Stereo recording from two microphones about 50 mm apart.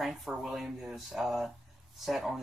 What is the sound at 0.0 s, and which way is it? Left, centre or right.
Speech, centre.